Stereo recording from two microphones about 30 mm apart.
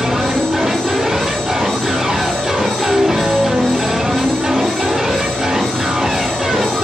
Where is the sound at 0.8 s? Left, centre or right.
Centre.